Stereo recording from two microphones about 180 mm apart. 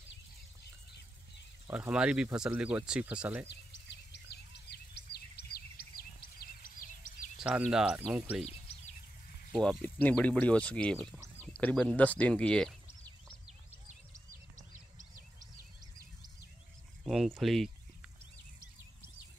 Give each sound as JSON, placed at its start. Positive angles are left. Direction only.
{"t": 1.7, "sound": "speech", "side_deg": -5}
{"t": 3.4, "sound": "a sound", "side_deg": 70}
{"t": 7.3, "sound": "cricket", "side_deg": -5}
{"t": 7.7, "sound": "speech", "side_deg": -5}
{"t": 8.5, "sound": "a sound", "side_deg": 35}
{"t": 9.6, "sound": "speech", "side_deg": 5}
{"t": 17.0, "sound": "speech", "side_deg": 0}